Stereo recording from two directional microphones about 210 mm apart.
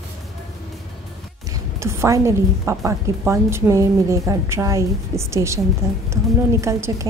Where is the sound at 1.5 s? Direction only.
15° right (ahead or behind).